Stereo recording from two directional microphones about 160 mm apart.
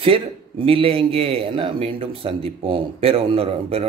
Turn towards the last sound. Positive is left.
turn(degrees=-40)  # may be behind; listen again after turning